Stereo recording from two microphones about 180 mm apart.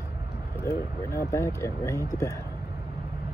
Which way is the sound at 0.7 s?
55° left (ahead or behind).